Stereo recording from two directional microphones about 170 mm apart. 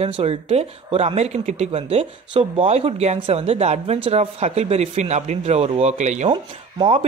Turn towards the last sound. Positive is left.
turn(degrees=-30)  # may be behind; listen again after turning